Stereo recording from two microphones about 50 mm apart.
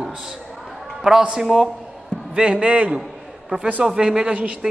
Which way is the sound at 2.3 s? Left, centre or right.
Right.